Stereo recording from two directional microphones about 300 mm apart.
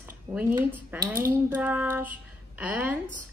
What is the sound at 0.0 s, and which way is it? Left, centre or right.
Speech, centre.